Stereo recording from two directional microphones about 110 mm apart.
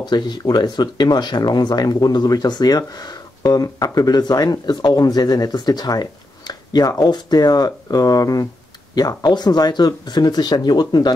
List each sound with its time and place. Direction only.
0.1 s speech: 40° left (ahead or behind)